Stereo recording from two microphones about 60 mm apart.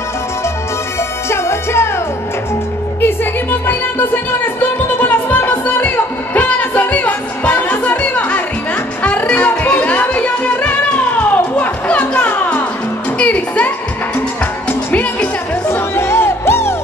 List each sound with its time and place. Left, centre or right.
1.3 s music: left
3.6 s music: left
15.7 s music: left